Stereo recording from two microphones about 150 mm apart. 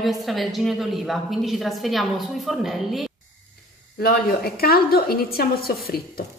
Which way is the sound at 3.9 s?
90° left.